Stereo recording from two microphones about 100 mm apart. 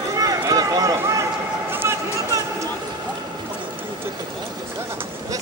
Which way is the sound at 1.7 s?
25° right (ahead or behind).